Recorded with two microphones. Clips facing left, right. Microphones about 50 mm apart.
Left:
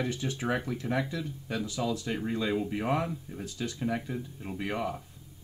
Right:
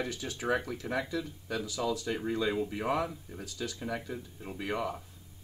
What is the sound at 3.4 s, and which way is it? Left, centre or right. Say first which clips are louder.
Speech: left 2 dB; left.